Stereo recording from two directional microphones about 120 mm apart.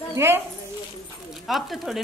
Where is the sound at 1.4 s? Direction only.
Centre (ahead or behind).